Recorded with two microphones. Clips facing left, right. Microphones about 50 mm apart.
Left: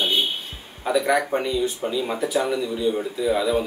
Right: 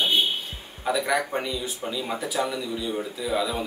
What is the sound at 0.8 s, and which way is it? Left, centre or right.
Speech, centre.